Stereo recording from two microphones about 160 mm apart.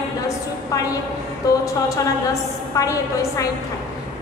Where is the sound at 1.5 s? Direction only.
20° left (ahead or behind).